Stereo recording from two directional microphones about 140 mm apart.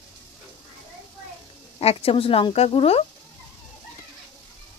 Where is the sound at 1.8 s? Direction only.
45° left (ahead or behind).